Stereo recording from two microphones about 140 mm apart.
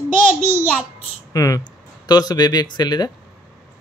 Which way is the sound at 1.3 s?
25° left (ahead or behind).